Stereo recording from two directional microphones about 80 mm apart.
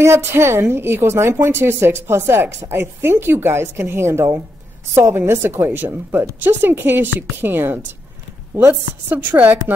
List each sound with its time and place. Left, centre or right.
0.0 s a woman's voice: right